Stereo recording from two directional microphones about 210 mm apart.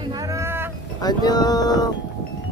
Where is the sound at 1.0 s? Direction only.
20° left (ahead or behind).